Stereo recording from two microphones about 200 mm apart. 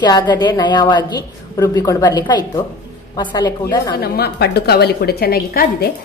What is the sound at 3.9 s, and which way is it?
A woman's voice, 50° left (ahead or behind).